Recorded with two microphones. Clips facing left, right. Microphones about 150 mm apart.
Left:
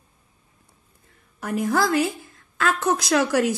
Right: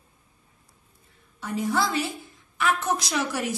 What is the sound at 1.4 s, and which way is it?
A woman's voice, 90° left.